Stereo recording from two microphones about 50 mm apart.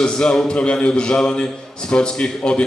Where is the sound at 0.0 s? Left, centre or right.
Centre.